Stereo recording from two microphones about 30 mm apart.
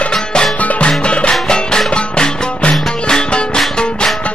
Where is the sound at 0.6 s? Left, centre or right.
Left.